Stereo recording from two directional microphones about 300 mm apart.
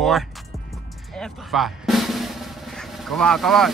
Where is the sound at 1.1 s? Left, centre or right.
Centre.